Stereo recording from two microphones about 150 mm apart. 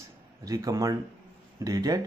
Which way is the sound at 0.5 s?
25° right (ahead or behind).